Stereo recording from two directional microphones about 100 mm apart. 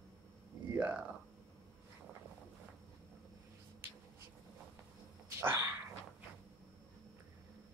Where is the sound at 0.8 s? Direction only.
15° right (ahead or behind).